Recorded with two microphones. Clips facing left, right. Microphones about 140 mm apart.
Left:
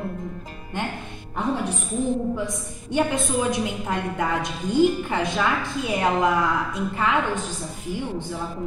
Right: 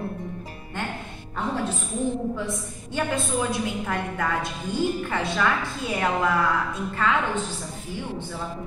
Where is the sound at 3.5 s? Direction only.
20° left (ahead or behind).